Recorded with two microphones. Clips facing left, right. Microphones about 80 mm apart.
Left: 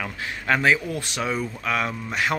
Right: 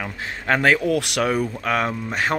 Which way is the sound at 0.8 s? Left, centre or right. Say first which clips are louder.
Right 7 dB; right.